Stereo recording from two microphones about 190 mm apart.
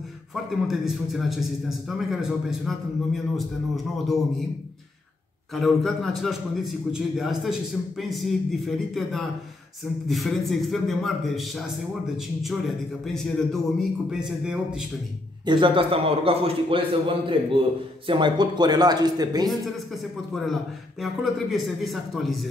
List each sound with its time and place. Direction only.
0.3 s a man's voice: centre (ahead or behind)
5.5 s a man's voice: centre (ahead or behind)
15.4 s speech: 25° right (ahead or behind)
19.5 s a man's voice: centre (ahead or behind)